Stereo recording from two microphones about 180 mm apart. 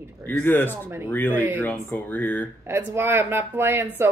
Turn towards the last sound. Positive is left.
turn(degrees=-15)  # may be behind; listen again after turning